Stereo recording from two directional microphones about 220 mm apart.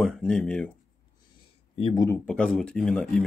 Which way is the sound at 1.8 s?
25° left (ahead or behind).